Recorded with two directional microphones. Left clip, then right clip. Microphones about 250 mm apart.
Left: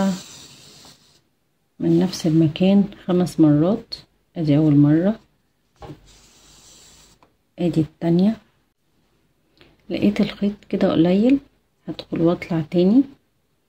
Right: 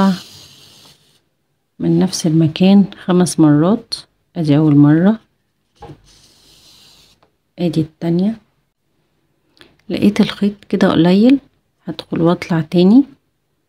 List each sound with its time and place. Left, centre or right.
1.8 s speech: right
7.5 s a woman's voice: centre
9.6 s speech: right